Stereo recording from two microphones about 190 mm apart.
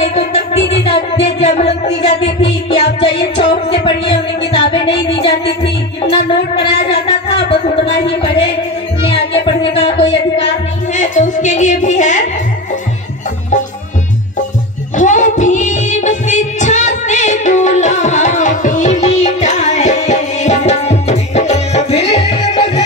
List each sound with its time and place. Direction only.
0.0 s music: 35° left (ahead or behind)
4.5 s music: 30° left (ahead or behind)
11.0 s a sound: 40° left (ahead or behind)
15.0 s music: 40° left (ahead or behind)